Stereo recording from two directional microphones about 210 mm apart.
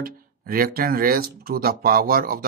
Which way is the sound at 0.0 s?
45° right (ahead or behind).